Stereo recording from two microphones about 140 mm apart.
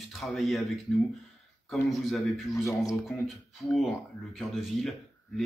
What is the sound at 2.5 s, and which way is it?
Speech, 25° left (ahead or behind).